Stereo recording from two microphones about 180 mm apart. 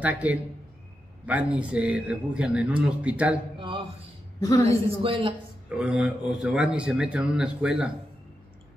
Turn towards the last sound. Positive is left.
turn(degrees=-5)  # may be behind; listen again after turning